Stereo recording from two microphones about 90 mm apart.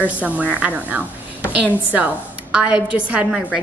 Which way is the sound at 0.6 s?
15° right (ahead or behind).